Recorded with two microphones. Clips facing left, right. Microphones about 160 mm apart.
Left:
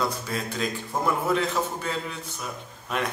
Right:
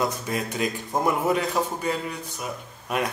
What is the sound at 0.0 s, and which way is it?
A man's voice, 15° right (ahead or behind).